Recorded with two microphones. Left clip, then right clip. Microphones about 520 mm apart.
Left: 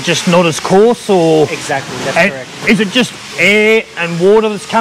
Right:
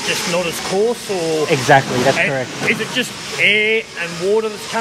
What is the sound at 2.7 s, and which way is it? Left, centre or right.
Speech, left.